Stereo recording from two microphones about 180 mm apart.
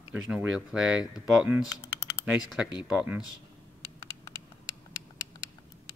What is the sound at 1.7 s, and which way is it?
Typing, 15° left (ahead or behind).